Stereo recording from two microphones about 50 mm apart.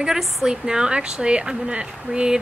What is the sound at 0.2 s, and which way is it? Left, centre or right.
Speech, centre.